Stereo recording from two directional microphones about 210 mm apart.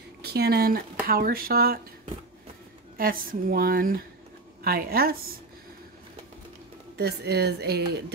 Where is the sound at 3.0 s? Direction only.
45° right (ahead or behind).